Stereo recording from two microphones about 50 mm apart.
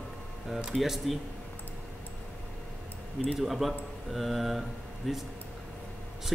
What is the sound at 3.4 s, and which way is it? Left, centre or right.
Speech, centre.